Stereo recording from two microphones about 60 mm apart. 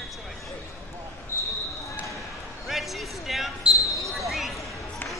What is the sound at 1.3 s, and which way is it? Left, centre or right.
Basketball bounce, left.